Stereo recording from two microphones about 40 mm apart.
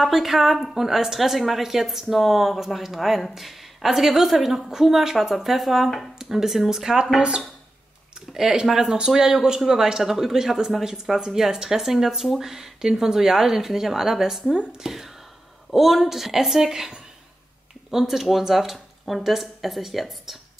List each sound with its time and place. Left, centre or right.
0.0 s a woman's voice: centre
7.2 s speech: right
8.3 s speech: centre
17.9 s speech: centre